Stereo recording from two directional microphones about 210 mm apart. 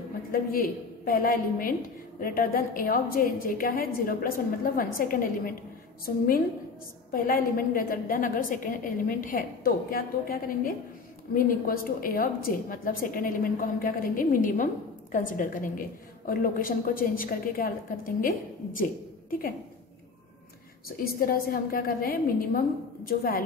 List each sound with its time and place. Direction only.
0.3 s a woman's voice: 45° left (ahead or behind)
21.0 s a woman's voice: 45° left (ahead or behind)